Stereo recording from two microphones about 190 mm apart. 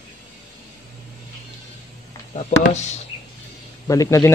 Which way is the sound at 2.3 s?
35° left (ahead or behind).